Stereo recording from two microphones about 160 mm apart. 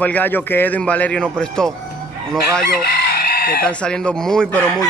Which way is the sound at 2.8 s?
75° left (ahead or behind).